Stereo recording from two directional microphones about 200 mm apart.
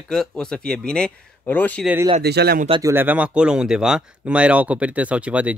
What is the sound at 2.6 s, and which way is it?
Speech, 25° right (ahead or behind).